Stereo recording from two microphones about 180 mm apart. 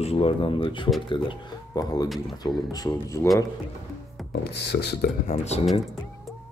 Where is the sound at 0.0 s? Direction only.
35° left (ahead or behind); by 3.3 s 15° left (ahead or behind).